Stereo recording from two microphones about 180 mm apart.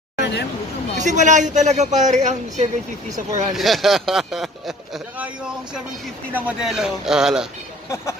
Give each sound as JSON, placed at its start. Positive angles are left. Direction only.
{"t": 0.2, "sound": "hubbub", "side_deg": 70}
{"t": 0.9, "sound": "a man's voice", "side_deg": -40}
{"t": 3.5, "sound": "speech", "side_deg": 0}
{"t": 7.9, "sound": "speech", "side_deg": 15}